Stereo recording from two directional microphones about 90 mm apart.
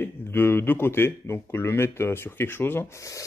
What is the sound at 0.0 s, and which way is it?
Speech, 25° left (ahead or behind).